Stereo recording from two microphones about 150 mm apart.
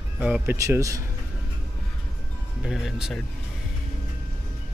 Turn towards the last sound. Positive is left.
turn(degrees=-5)  # may be behind; listen again after turning